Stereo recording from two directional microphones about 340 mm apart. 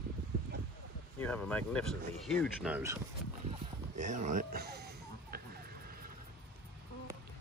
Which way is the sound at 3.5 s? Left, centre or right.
Right.